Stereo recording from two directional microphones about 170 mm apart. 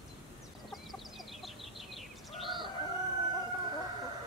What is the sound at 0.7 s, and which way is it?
Chicken, centre (ahead or behind).